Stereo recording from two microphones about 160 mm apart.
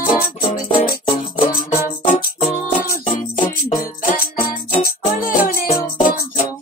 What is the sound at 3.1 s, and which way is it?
Music, 55° left (ahead or behind).